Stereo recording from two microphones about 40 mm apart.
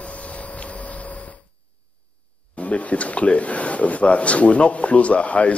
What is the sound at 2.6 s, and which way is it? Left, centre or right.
Speech, left.